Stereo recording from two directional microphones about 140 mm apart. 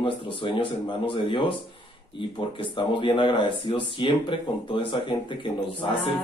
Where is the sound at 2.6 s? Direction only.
35° left (ahead or behind).